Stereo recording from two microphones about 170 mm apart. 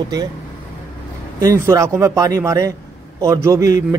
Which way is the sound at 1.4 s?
15° right (ahead or behind).